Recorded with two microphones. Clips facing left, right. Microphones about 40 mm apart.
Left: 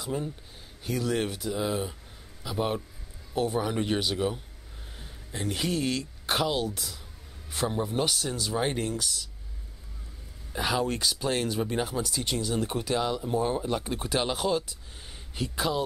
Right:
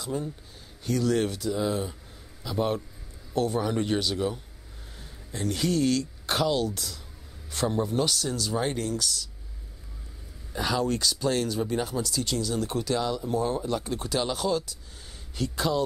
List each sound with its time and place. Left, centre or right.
0.0 s speech: centre
10.5 s speech: centre